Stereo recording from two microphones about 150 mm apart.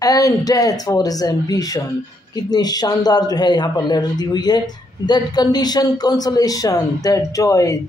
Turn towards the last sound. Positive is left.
turn(degrees=20)  # may be behind; listen again after turning